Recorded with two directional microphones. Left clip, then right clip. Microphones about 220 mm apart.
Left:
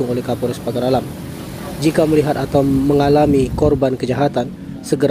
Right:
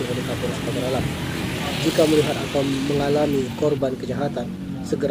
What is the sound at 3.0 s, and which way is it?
Speech, 40° left (ahead or behind).